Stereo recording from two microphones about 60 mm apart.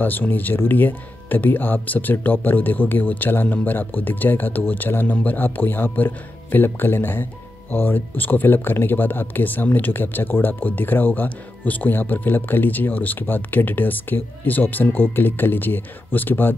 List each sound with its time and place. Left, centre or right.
0.0 s speech: left